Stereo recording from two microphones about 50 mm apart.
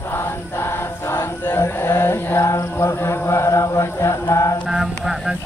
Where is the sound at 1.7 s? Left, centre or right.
Left.